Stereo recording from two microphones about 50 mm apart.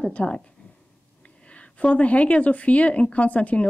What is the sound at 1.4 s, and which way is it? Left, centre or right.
Speech, left.